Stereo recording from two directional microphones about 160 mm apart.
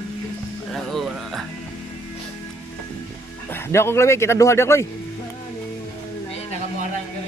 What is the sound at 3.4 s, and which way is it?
Speech, 15° left (ahead or behind).